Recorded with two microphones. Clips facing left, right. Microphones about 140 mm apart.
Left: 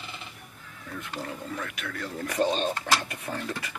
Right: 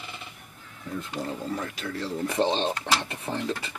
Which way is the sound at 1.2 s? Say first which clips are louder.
Right 4 dB; 30° right (ahead or behind).